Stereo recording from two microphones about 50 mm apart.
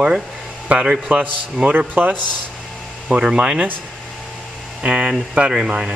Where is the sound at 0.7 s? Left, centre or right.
Right.